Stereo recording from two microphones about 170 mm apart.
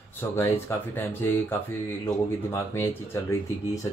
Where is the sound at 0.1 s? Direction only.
15° left (ahead or behind).